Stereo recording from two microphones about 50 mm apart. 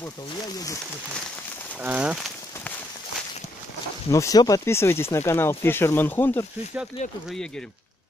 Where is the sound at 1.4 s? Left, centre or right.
Left.